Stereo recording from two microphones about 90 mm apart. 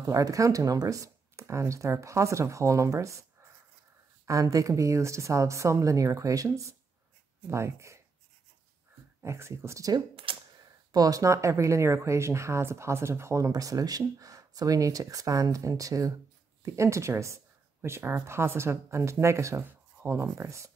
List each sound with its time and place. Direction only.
0.0 s speech: 40° right (ahead or behind)
4.3 s speech: 40° right (ahead or behind)
9.2 s speech: 30° right (ahead or behind)
10.3 s typewriter: 85° right
10.6 s speech: 45° right (ahead or behind)